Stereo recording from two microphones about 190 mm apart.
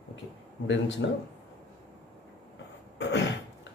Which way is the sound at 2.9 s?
65° left (ahead or behind).